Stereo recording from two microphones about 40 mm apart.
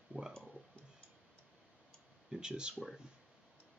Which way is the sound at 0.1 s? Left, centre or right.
Right.